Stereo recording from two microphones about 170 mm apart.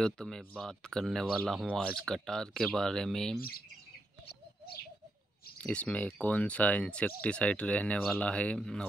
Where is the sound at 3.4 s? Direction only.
60° left (ahead or behind).